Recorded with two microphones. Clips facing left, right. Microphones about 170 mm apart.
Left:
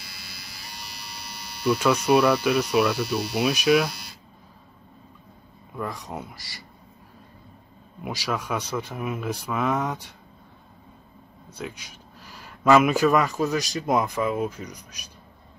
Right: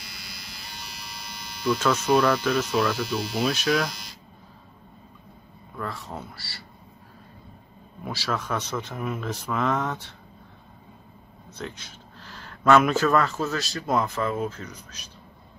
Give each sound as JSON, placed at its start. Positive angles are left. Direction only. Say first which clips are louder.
{"t": 0.0, "sound": "electric shaver", "louder": "right 1 dB", "side_deg": 5}
{"t": 1.8, "sound": "speech", "louder": "left 2 dB", "side_deg": 10}
{"t": 5.8, "sound": "speech", "louder": "left 2 dB", "side_deg": 15}
{"t": 8.0, "sound": "speech", "louder": "left 1 dB", "side_deg": 10}
{"t": 11.5, "sound": "speech", "louder": "left 1 dB", "side_deg": 10}